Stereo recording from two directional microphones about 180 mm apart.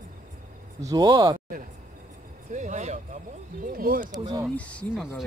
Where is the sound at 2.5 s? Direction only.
40° right (ahead or behind).